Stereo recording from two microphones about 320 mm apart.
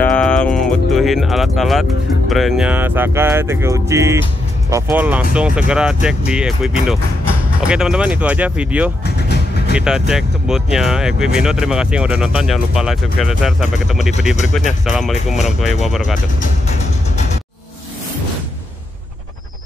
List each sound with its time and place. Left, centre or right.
0.0 s speech: centre
9.0 s vehicle: left
9.8 s speech: centre